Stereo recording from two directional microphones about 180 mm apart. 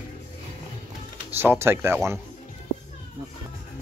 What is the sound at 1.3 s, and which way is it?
Speech, 10° right (ahead or behind).